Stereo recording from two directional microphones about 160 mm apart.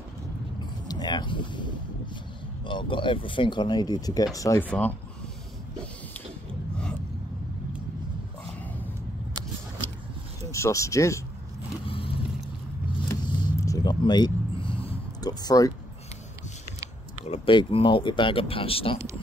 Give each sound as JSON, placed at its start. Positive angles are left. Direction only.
{"t": 0.8, "sound": "speech", "side_deg": 25}
{"t": 10.5, "sound": "speech", "side_deg": 20}
{"t": 11.8, "sound": "vehicle", "side_deg": 35}
{"t": 13.2, "sound": "vehicle", "side_deg": 30}
{"t": 15.2, "sound": "speech", "side_deg": 25}
{"t": 17.3, "sound": "speech", "side_deg": 35}